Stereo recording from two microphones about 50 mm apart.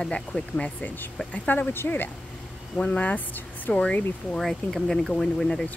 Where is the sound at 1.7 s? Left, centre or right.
Left.